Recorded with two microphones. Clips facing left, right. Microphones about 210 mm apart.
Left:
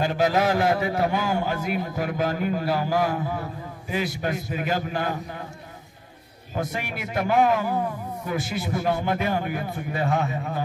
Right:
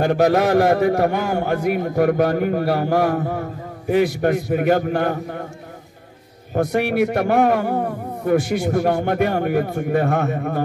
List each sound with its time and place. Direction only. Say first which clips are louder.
0.0 s a man's voice: right 6 dB; 55° right (ahead or behind)
6.5 s a man's voice: right 11 dB; 60° right (ahead or behind)